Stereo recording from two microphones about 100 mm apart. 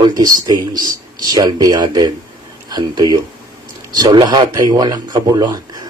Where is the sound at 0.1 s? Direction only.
40° right (ahead or behind).